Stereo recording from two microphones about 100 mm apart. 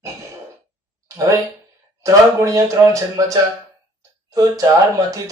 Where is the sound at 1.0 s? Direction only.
35° right (ahead or behind).